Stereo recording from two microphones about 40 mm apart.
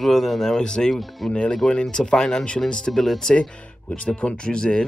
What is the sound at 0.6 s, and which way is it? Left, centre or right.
Speech, centre.